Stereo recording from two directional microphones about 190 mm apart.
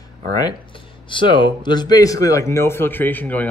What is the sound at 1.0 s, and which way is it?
Speech, 25° left (ahead or behind).